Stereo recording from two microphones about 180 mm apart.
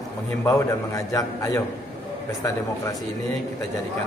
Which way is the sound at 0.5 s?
15° left (ahead or behind).